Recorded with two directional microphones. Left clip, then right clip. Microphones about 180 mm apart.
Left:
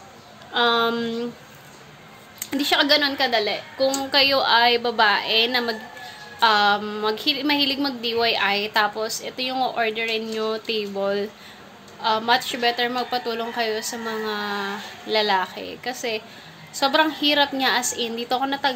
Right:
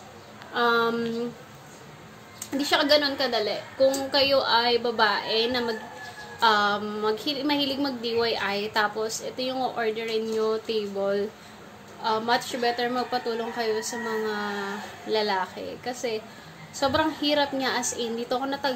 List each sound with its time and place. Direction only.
0.5 s a woman's voice: 15° left (ahead or behind)
2.5 s a woman's voice: 15° left (ahead or behind)